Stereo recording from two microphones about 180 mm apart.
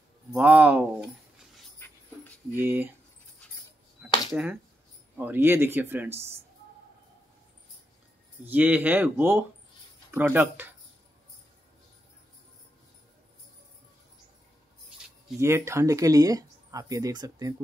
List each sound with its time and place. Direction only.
0.3 s speech: 10° right (ahead or behind)
1.8 s dog: 10° left (ahead or behind)
2.6 s speech: 10° right (ahead or behind)
4.3 s speech: 5° right (ahead or behind)
8.5 s speech: 10° right (ahead or behind)
15.4 s speech: 15° right (ahead or behind)